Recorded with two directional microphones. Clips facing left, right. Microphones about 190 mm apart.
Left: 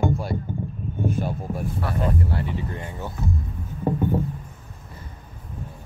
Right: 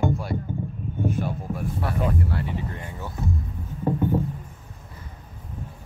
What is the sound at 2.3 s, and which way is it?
Speech, 30° left (ahead or behind).